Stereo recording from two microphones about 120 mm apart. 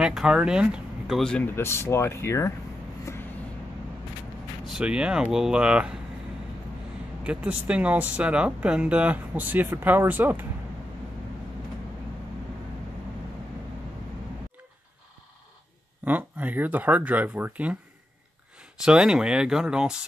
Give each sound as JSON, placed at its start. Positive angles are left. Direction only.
{"t": 0.0, "sound": "speech", "side_deg": -5}
{"t": 1.5, "sound": "speech", "side_deg": 20}
{"t": 4.6, "sound": "speech", "side_deg": -5}
{"t": 7.2, "sound": "speech", "side_deg": -10}
{"t": 16.1, "sound": "speech", "side_deg": -15}